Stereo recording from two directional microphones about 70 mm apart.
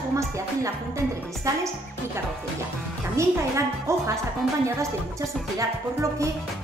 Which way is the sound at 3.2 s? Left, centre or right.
Right.